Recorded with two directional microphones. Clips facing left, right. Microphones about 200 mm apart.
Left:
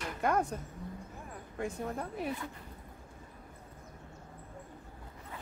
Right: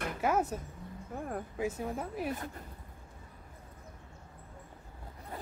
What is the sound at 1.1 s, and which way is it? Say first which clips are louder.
Speech: right 10 dB; 55° right (ahead or behind).